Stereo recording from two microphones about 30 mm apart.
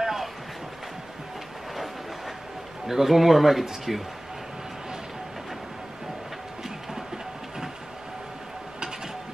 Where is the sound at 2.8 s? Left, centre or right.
Centre.